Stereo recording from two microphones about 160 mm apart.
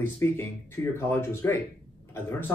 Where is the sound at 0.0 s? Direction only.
15° left (ahead or behind).